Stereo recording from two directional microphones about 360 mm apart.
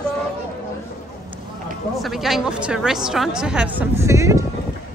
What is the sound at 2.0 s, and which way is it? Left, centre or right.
A woman's voice, centre.